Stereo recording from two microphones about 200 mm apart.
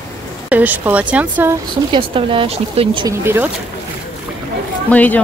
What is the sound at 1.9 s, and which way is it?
Speech, 25° right (ahead or behind).